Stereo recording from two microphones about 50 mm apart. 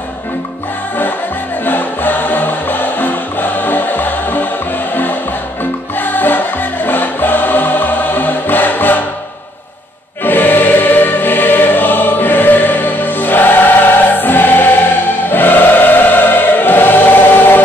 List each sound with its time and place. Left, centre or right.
1.6 s music: left
5.6 s music: left
10.2 s choir: left